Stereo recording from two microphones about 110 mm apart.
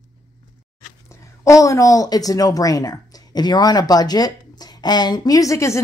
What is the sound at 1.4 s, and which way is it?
Speech, 30° left (ahead or behind).